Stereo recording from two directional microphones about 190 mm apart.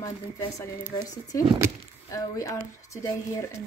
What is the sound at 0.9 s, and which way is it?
Speech, 20° left (ahead or behind).